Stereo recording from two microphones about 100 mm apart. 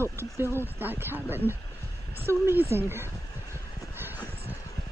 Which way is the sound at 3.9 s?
20° right (ahead or behind).